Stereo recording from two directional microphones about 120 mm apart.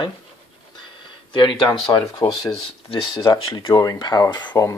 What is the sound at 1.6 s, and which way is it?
Speech, 40° left (ahead or behind).